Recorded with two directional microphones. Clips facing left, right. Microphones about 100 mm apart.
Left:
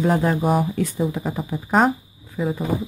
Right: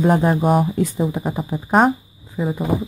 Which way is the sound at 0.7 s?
30° right (ahead or behind).